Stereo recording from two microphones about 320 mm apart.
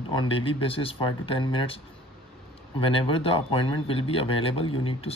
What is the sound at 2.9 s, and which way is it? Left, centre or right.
Speech, centre.